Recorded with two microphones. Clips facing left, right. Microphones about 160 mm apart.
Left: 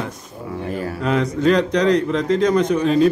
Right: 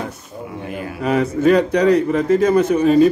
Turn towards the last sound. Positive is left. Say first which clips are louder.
# right 3 dB
turn(degrees=-5)  # may be behind; listen again after turning